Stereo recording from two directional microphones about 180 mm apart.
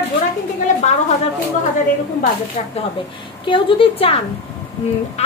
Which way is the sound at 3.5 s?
30° left (ahead or behind).